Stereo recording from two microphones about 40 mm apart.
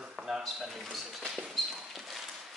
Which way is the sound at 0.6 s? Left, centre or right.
Centre.